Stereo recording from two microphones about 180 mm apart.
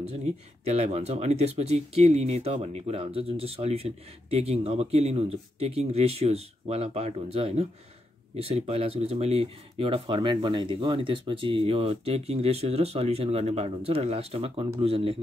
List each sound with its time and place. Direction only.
0.7 s speech: 35° right (ahead or behind)